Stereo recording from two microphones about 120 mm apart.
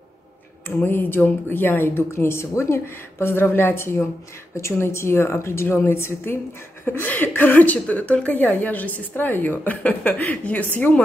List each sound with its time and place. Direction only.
0.7 s speech: 15° left (ahead or behind)